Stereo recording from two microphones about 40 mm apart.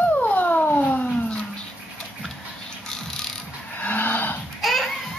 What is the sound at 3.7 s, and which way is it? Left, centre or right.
Livestock, left.